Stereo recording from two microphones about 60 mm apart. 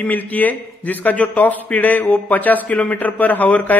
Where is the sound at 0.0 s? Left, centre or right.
Left.